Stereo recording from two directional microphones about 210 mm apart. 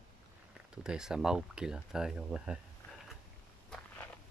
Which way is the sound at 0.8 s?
5° right (ahead or behind).